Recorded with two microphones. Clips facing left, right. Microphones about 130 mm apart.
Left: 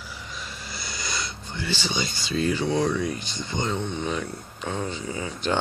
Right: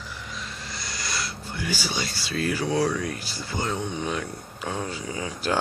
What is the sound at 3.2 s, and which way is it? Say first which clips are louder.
Speech: left 1 dB; 5° right (ahead or behind).